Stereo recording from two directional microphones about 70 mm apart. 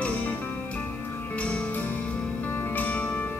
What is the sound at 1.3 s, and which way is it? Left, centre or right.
Music, centre.